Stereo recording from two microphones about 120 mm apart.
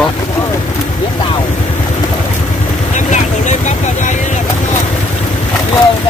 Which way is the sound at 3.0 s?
85° left.